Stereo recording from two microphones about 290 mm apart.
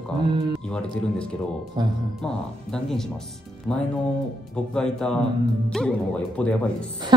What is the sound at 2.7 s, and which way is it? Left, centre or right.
Speech, centre.